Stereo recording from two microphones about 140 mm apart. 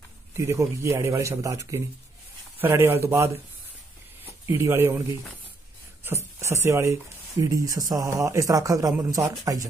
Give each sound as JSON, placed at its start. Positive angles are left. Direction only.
{"t": 0.4, "sound": "speech", "side_deg": -20}
{"t": 4.5, "sound": "speech", "side_deg": -20}